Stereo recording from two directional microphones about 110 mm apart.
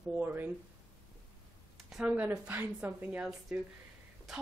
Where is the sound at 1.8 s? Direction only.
10° right (ahead or behind).